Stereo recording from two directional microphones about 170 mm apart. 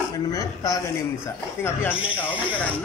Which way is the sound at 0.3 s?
20° left (ahead or behind).